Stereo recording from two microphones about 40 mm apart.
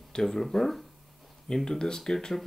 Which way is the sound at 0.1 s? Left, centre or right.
Centre.